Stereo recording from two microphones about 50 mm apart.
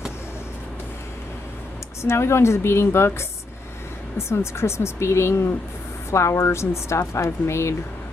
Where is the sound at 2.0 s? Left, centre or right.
Left.